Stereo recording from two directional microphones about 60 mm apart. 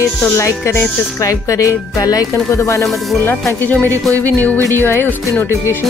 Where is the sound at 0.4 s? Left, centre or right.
Left.